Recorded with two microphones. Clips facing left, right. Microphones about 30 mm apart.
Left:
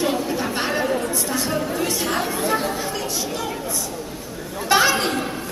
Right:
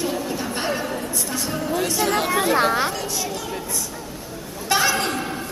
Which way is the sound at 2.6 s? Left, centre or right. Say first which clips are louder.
Right 6 dB; right.